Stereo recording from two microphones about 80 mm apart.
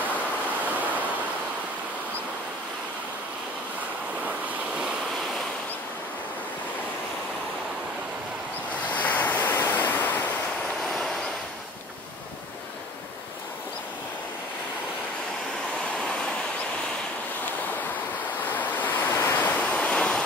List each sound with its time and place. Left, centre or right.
8.9 s waves: left
18.4 s waves: left